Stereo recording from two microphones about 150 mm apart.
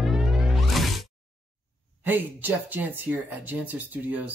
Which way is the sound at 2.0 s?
10° right (ahead or behind).